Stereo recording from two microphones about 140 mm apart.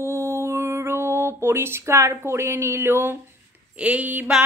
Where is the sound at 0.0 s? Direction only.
20° right (ahead or behind).